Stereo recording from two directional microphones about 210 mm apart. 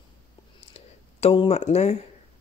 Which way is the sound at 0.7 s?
30° left (ahead or behind).